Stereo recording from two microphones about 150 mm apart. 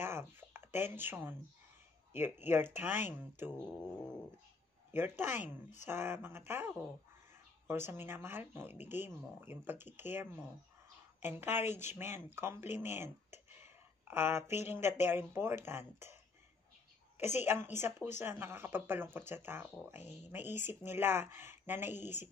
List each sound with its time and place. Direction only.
0.0 s a sound: 15° right (ahead or behind)
0.7 s speech: 15° right (ahead or behind)
3.5 s cat: 5° left (ahead or behind)
4.9 s speech: 15° right (ahead or behind)
17.2 s speech: 15° right (ahead or behind)